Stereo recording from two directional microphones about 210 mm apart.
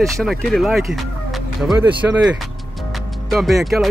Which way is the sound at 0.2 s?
Centre (ahead or behind).